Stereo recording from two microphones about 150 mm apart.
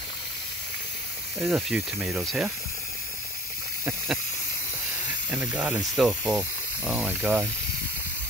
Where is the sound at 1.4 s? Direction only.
5° right (ahead or behind).